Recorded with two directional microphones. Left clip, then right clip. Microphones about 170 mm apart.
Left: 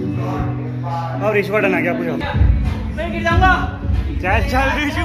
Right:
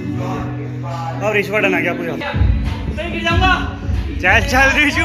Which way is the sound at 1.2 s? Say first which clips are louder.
Right 1 dB; 5° left (ahead or behind).